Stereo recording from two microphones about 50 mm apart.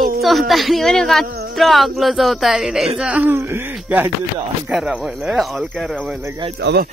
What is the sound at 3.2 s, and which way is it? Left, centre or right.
Speech, right.